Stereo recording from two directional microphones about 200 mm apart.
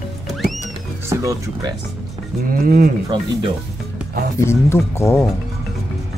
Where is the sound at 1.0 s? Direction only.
15° right (ahead or behind).